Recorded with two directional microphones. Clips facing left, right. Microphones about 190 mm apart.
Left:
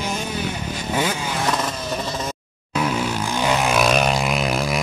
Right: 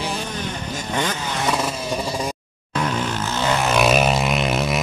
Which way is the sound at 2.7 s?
10° left (ahead or behind).